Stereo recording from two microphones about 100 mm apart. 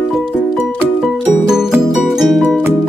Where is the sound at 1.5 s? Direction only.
5° right (ahead or behind).